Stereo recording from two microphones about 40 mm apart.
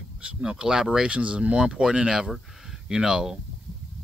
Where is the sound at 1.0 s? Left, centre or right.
Right.